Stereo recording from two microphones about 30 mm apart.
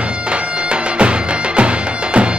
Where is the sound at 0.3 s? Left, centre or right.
Right.